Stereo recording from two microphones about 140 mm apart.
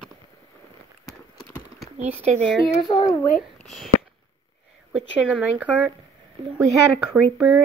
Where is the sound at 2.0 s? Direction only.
50° right (ahead or behind).